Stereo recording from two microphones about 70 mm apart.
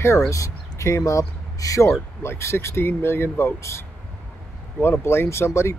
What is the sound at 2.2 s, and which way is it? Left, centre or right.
Speech, left.